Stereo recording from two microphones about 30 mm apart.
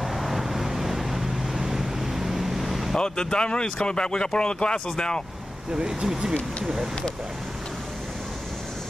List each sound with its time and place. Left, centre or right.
0.0 s vehicle: centre
3.0 s speech: left
5.9 s speech: right